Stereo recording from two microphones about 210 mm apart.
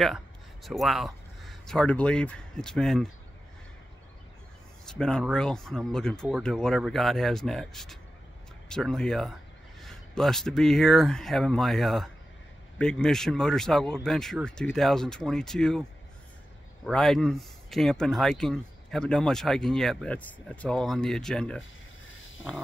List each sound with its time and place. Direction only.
0.7 s speech: centre (ahead or behind)
4.8 s speech: 5° left (ahead or behind)
16.8 s speech: centre (ahead or behind)
22.0 s a sound: 70° left (ahead or behind)